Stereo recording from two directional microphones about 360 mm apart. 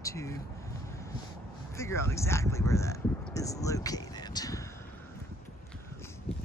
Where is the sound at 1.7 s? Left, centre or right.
Centre.